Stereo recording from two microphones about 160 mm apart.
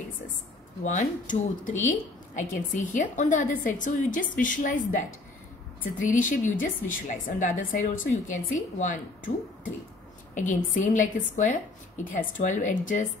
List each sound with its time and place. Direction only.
0.8 s a woman's voice: 50° left (ahead or behind)
10.3 s a woman's voice: 50° left (ahead or behind)